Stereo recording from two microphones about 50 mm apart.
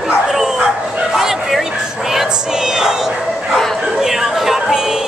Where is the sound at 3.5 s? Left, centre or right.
Centre.